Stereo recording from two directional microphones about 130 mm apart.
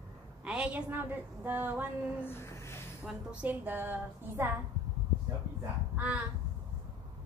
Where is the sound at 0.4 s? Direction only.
10° right (ahead or behind).